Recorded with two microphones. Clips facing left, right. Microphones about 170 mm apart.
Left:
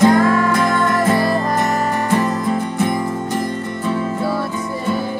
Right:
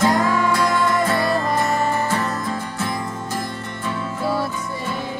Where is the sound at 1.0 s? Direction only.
20° left (ahead or behind).